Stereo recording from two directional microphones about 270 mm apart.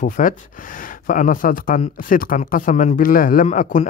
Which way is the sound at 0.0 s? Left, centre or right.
Left.